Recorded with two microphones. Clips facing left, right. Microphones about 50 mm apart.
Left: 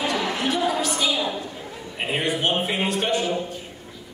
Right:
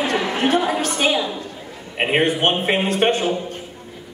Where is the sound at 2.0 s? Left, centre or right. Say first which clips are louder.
Right 6 dB; right.